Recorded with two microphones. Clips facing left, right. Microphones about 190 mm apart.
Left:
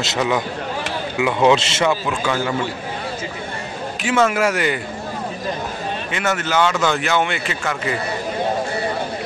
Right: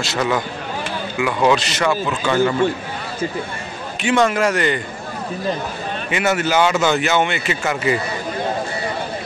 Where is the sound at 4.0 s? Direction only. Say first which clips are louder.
Right 1 dB; 5° left (ahead or behind).